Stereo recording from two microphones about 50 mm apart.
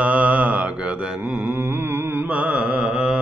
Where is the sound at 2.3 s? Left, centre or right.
Right.